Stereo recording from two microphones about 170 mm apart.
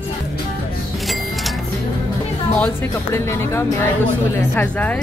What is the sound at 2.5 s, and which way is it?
Speech, 10° left (ahead or behind).